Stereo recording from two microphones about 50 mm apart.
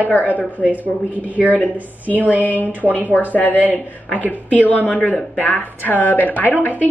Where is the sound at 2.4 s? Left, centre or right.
Left.